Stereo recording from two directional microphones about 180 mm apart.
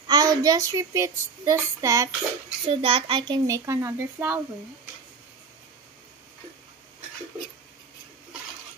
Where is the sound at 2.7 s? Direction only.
30° right (ahead or behind).